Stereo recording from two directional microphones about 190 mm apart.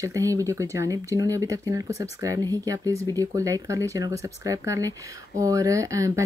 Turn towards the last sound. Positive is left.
turn(degrees=-15)  # may be behind; listen again after turning